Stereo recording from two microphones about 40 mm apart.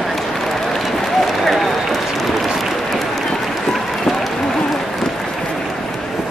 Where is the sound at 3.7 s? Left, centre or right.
Centre.